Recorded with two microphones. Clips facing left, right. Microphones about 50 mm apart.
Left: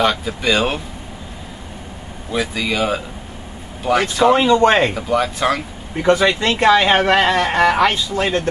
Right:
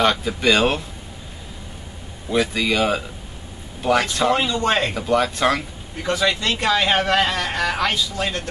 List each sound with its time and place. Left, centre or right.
0.0 s speech: centre
2.3 s speech: centre
4.4 s speech: left
4.9 s speech: centre
6.0 s speech: left